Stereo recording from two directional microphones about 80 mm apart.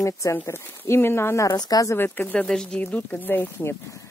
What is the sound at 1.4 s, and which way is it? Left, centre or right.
Speech, left.